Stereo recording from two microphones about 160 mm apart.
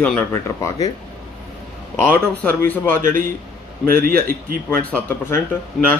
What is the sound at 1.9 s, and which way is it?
A man's voice, 15° left (ahead or behind).